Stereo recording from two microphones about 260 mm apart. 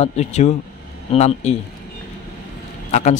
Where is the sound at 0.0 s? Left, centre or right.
Left.